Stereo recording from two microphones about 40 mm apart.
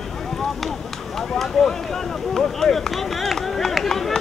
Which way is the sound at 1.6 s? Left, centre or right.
Centre.